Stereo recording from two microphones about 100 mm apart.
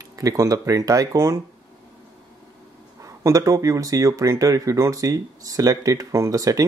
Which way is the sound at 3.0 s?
35° right (ahead or behind).